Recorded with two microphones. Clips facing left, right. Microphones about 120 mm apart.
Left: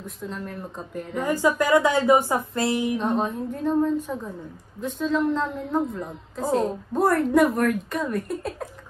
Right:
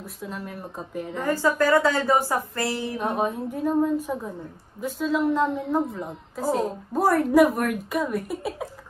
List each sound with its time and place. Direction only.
0.0 s a woman's voice: 5° right (ahead or behind)
1.1 s speech: 15° left (ahead or behind)
3.0 s a woman's voice: 10° right (ahead or behind)